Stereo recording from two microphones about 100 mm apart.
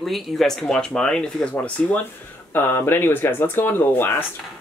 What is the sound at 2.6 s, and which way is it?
Speech, 20° left (ahead or behind).